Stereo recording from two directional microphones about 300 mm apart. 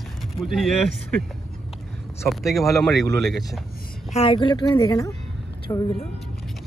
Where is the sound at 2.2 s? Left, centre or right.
Centre.